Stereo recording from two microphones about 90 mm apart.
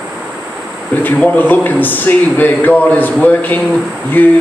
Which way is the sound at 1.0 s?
20° left (ahead or behind).